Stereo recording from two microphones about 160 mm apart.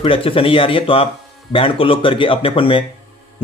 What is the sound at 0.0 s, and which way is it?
Speech, 35° left (ahead or behind).